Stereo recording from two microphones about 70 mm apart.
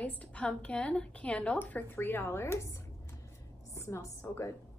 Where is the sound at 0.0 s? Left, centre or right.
Centre; by 2.7 s left.